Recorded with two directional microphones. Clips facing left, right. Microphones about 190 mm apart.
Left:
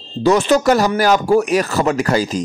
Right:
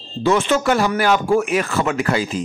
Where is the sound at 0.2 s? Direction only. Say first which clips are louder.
Left 4 dB; 40° left (ahead or behind).